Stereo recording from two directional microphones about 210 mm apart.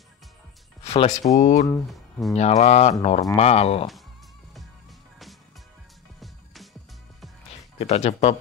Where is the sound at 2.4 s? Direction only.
30° left (ahead or behind).